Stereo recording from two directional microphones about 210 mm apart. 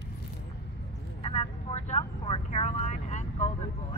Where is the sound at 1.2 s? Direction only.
25° left (ahead or behind).